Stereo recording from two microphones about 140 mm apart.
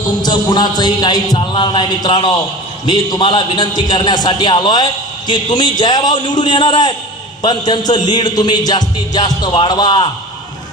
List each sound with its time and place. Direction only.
0.2 s speech: 30° left (ahead or behind)